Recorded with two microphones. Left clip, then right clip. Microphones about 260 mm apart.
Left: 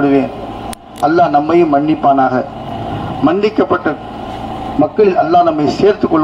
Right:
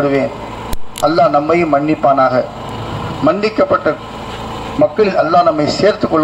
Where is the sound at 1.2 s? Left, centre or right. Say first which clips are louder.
Left 1 dB; right.